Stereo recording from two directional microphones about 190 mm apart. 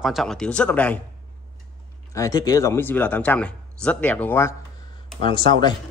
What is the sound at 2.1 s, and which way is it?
Speech, 20° left (ahead or behind).